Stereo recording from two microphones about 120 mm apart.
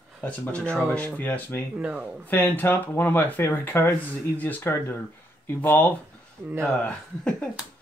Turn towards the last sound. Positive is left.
turn(degrees=10)  # may be behind; listen again after turning